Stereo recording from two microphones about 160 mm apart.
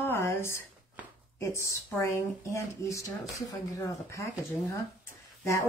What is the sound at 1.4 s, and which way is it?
Speech, 15° left (ahead or behind).